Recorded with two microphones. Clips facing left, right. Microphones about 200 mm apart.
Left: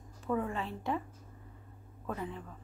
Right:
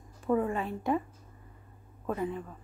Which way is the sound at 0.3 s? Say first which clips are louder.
Right 5 dB; 30° right (ahead or behind).